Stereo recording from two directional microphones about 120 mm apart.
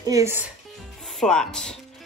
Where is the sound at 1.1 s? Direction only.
5° left (ahead or behind).